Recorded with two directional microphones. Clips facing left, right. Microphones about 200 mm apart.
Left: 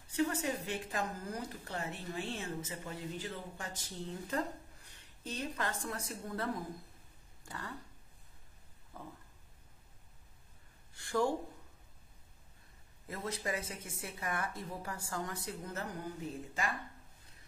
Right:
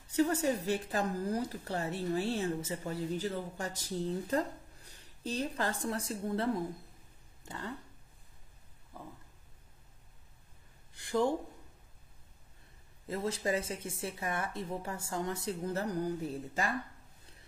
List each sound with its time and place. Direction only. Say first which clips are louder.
0.1 s a woman's voice: right 5 dB; 40° right (ahead or behind); by 7.7 s 20° right (ahead or behind)
8.9 s a sound: right 1 dB; 10° right (ahead or behind)
11.0 s speech: right 2 dB; 20° right (ahead or behind)
13.1 s speech: right 6 dB; 30° right (ahead or behind)